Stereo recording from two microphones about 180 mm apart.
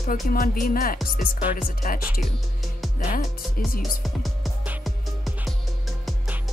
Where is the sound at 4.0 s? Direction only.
Centre (ahead or behind).